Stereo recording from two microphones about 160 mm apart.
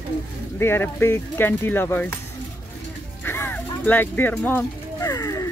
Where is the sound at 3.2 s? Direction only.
15° left (ahead or behind).